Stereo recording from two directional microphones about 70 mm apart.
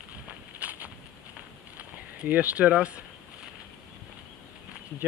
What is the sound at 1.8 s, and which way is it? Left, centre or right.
Speech, right.